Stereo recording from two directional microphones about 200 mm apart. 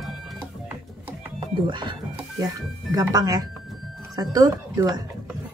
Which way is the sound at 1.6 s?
25° right (ahead or behind).